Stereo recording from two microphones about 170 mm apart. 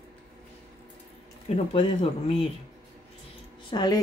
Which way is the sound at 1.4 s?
35° left (ahead or behind).